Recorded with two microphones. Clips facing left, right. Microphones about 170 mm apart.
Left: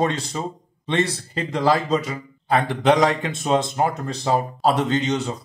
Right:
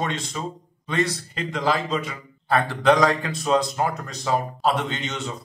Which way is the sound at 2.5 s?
20° left (ahead or behind).